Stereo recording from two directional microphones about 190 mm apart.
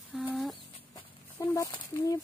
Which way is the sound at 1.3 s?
15° left (ahead or behind).